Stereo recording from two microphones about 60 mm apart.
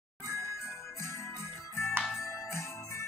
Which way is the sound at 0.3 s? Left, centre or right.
Left.